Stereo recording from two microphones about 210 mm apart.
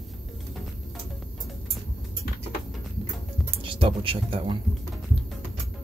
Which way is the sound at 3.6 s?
25° right (ahead or behind).